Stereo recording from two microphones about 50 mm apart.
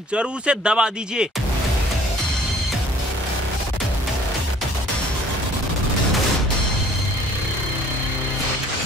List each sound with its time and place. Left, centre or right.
0.1 s speech: right